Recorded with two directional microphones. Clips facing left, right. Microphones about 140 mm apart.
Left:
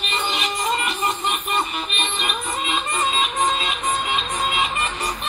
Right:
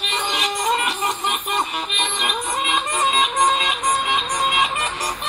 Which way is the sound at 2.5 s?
85° right.